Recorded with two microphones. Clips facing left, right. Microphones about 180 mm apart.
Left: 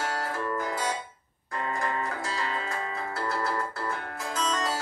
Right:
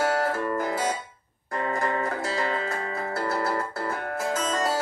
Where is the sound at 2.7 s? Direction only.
40° right (ahead or behind).